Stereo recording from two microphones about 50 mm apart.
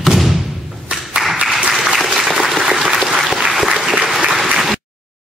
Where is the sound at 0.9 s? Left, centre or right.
Right.